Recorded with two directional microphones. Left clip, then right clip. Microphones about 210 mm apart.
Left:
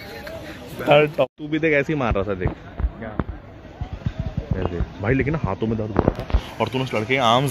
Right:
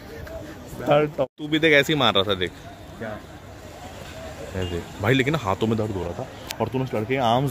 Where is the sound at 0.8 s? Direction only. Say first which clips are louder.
Left 4 dB; 10° left (ahead or behind).